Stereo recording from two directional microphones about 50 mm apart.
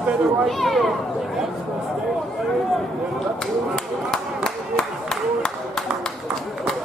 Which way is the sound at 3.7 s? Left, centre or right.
Centre.